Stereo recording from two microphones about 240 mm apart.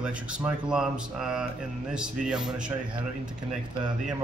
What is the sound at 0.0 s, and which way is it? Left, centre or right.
Speech, centre.